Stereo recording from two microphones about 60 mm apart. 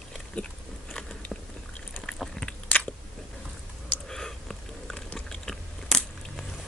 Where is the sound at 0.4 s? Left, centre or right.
Left.